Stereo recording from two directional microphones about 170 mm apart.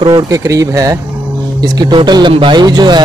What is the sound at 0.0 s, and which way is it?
Speech, 25° right (ahead or behind).